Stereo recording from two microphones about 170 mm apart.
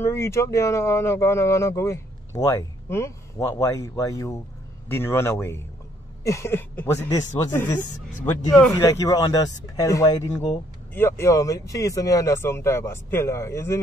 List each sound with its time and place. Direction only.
0.0 s speech: 15° left (ahead or behind)
8.5 s speech: 5° left (ahead or behind)
8.7 s speech: 20° left (ahead or behind)